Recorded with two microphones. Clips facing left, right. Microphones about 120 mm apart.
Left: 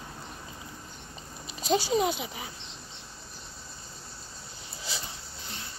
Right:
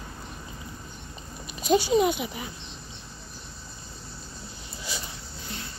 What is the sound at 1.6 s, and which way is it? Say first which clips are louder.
Speech: right 4 dB; 35° left (ahead or behind).